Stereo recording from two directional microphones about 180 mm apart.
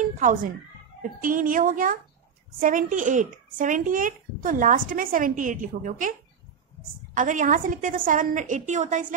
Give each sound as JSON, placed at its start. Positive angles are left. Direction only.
{"t": 0.2, "sound": "speech", "side_deg": -50}
{"t": 7.2, "sound": "speech", "side_deg": -45}